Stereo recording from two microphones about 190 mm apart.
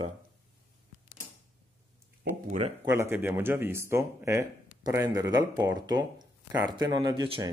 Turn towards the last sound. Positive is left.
turn(degrees=-25)  # may be behind; listen again after turning